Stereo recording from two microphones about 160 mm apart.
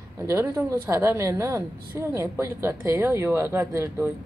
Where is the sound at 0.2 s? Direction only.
15° right (ahead or behind).